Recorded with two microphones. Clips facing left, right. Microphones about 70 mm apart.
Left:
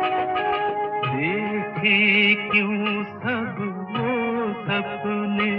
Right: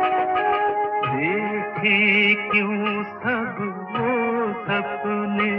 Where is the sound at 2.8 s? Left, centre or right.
Centre.